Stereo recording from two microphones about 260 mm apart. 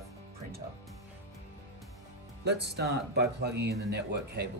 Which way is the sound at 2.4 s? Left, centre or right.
Right.